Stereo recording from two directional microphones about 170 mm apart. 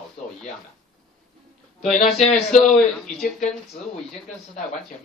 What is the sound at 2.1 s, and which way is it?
Speech, 40° left (ahead or behind).